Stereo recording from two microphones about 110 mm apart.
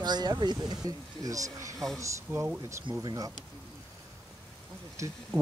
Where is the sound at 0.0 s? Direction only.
40° right (ahead or behind); by 2.6 s 20° right (ahead or behind).